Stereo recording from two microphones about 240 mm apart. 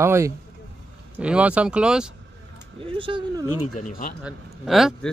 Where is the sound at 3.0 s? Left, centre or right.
Centre.